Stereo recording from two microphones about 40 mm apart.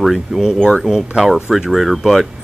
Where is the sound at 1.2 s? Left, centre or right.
Centre.